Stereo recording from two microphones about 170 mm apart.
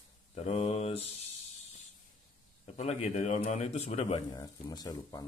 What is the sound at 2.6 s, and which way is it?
A man's voice, 40° left (ahead or behind).